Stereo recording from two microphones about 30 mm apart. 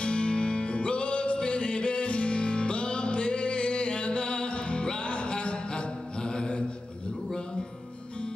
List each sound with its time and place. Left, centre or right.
0.0 s music: left
5.3 s mantra: left